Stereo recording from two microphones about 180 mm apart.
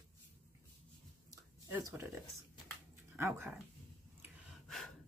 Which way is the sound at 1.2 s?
15° right (ahead or behind).